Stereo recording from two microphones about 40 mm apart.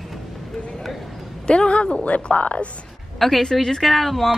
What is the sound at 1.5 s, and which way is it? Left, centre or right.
Speech, left.